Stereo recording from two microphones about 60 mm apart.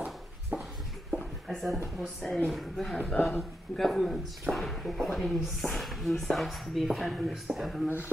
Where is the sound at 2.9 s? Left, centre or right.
Centre.